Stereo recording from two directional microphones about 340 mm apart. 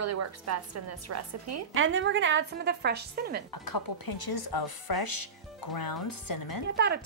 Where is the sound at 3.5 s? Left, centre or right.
Left.